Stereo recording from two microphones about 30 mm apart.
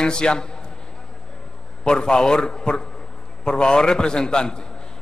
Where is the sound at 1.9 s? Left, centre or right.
Left.